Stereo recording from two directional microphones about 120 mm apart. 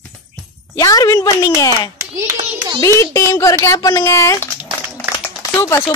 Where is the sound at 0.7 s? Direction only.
30° left (ahead or behind).